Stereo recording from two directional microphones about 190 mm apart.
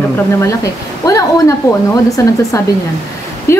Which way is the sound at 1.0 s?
15° left (ahead or behind).